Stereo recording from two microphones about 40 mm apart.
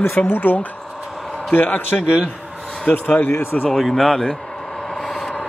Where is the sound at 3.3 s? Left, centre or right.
Left.